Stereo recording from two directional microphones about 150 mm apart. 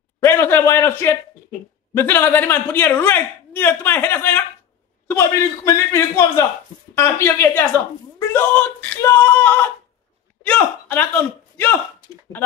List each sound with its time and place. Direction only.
0.2 s a woman's voice: 15° left (ahead or behind)